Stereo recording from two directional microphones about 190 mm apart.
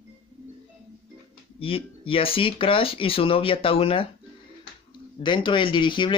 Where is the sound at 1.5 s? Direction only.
30° left (ahead or behind).